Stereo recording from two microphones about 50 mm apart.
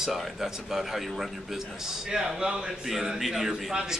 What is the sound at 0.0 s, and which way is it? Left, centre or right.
A man's voice, centre.